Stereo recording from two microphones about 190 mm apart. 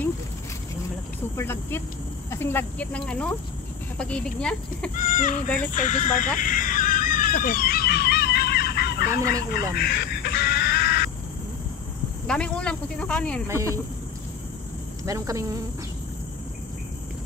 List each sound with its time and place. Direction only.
1.3 s speech: 10° left (ahead or behind)
4.9 s speech: 45° left (ahead or behind)
5.7 s a sound: 40° left (ahead or behind); by 9.0 s 60° left (ahead or behind)
9.1 s speech: 15° right (ahead or behind)
9.8 s fowl: 55° left (ahead or behind)
12.3 s speech: 5° left (ahead or behind)
13.5 s speech: 15° right (ahead or behind)
15.0 s speech: 15° right (ahead or behind)